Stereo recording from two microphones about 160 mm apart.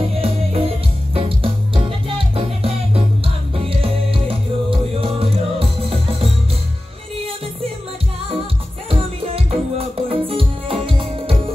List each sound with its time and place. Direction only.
0.1 s music: 40° right (ahead or behind)
9.3 s music: 35° right (ahead or behind)